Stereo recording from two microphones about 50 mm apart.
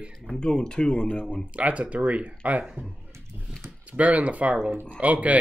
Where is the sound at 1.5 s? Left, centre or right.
Right.